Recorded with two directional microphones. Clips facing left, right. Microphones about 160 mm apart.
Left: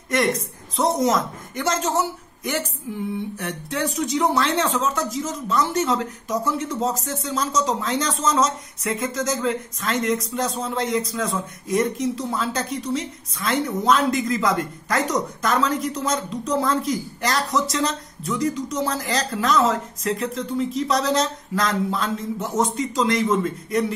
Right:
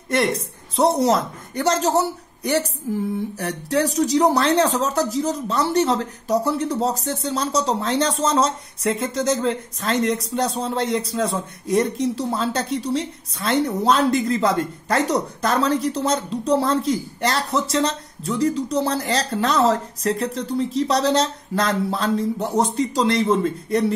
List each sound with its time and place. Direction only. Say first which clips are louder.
0.1 s speech: right 1 dB; 30° right (ahead or behind)